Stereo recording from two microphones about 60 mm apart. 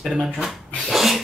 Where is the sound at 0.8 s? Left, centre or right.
Centre.